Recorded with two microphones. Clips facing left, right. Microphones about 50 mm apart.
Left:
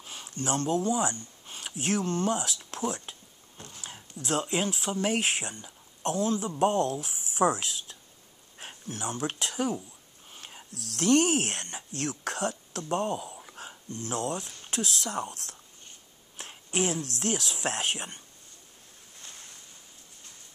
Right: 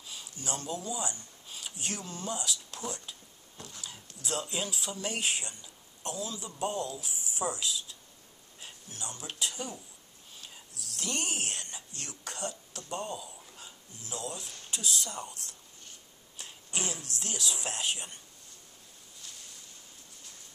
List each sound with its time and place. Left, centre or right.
0.0 s speech: left
1.4 s a sound: left
1.7 s speech: left
4.2 s speech: centre
4.5 s speech: left
8.5 s a sound: left
9.3 s speech: left
10.3 s speech: left
13.3 s speech: left